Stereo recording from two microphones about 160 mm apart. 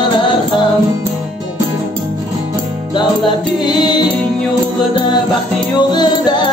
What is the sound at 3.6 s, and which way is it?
Music, 25° left (ahead or behind).